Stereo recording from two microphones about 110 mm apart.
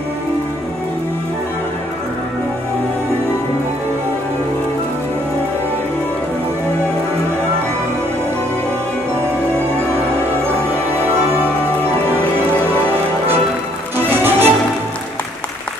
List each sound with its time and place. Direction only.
14.0 s music: 20° right (ahead or behind)